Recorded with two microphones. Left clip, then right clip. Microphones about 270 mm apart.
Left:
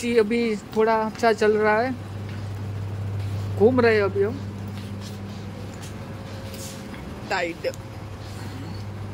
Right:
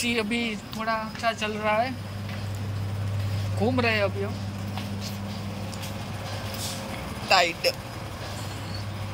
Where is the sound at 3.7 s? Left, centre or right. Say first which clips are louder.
Left 6 dB; centre.